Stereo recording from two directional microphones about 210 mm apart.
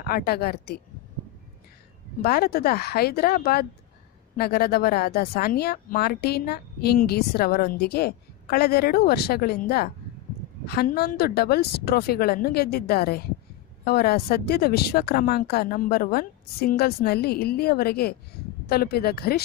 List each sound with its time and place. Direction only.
0.0 s speech: 45° left (ahead or behind)
2.2 s speech: 45° left (ahead or behind)